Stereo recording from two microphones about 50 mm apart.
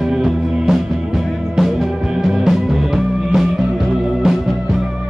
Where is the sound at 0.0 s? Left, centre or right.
Centre.